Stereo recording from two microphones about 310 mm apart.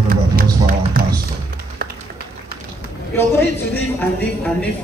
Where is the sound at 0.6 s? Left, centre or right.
Right.